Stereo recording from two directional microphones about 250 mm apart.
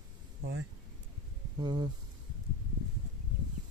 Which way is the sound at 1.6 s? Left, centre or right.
Centre.